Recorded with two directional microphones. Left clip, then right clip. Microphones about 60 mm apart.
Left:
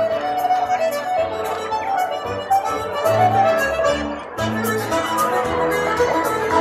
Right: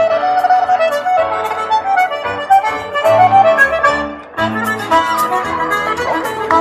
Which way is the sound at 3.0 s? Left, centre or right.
Right.